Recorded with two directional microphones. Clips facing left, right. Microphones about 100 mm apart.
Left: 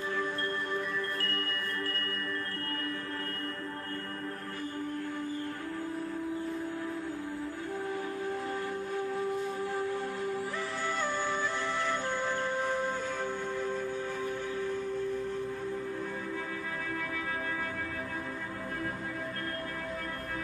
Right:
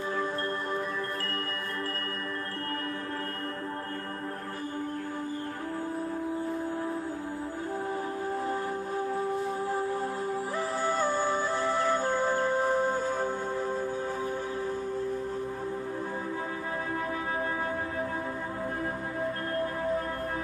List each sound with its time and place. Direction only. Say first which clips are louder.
9.7 s music: right 3 dB; 35° right (ahead or behind)
19.5 s music: right 8 dB; 30° right (ahead or behind)